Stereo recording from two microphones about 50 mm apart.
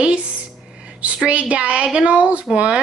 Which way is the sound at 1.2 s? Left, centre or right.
Right.